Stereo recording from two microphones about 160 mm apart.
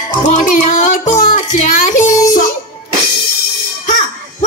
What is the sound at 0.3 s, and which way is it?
Child singing, 50° left (ahead or behind).